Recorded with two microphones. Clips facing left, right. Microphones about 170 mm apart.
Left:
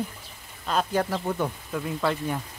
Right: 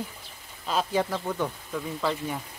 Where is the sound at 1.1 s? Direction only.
15° left (ahead or behind).